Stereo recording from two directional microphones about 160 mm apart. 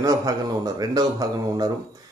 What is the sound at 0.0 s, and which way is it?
Speech, 20° right (ahead or behind).